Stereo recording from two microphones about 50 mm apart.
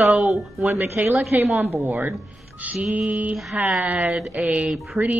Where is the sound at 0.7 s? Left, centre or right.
Right.